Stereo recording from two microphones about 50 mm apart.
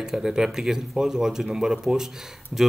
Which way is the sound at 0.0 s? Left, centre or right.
Centre.